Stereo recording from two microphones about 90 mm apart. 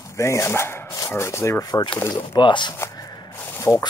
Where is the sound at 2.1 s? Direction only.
60° left (ahead or behind).